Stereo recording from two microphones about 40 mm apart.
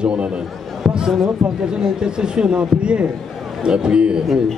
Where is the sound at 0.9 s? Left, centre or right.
Centre.